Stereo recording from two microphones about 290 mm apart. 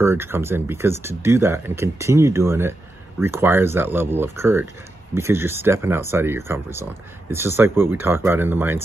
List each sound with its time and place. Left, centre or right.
0.0 s speech: centre